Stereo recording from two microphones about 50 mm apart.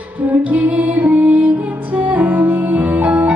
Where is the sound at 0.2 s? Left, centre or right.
Right.